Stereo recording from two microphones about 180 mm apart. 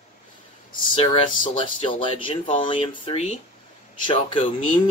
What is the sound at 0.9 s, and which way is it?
Speech, 30° left (ahead or behind).